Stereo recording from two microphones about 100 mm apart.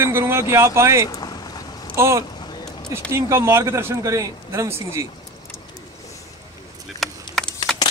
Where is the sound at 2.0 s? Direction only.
30° right (ahead or behind).